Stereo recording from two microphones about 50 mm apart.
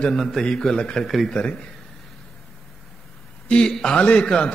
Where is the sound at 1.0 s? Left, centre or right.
Centre.